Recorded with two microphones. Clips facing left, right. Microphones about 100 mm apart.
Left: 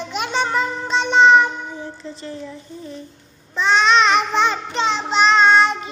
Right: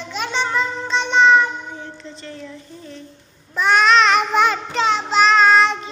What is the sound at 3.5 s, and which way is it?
Child singing, 10° right (ahead or behind).